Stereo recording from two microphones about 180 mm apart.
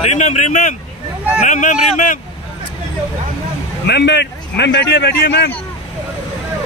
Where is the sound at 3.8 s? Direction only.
70° left (ahead or behind).